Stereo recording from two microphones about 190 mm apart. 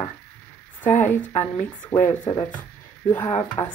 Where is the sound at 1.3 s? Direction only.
15° left (ahead or behind).